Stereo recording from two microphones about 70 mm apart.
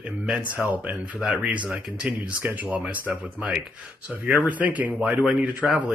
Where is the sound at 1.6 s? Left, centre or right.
Centre.